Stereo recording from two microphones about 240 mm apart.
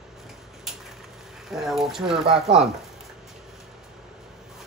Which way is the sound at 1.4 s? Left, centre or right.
Centre.